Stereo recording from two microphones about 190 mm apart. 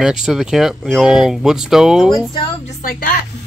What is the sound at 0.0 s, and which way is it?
Speech, 5° right (ahead or behind).